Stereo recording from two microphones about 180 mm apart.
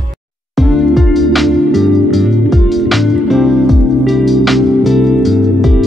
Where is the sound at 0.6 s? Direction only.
Centre (ahead or behind).